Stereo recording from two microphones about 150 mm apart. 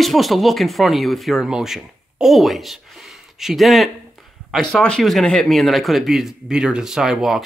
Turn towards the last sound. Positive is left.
turn(degrees=0)  # may be behind; listen again after turning